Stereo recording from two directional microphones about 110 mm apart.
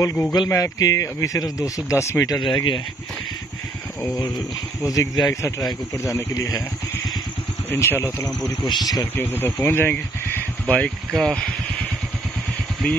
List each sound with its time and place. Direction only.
0.0 s speech: 30° left (ahead or behind)
2.3 s speech: 40° left (ahead or behind)
4.8 s speech: 30° left (ahead or behind)
7.7 s speech: 25° left (ahead or behind)
8.6 s speech: 40° left (ahead or behind)
9.0 s speech: 20° left (ahead or behind)
10.8 s speech: 5° left (ahead or behind)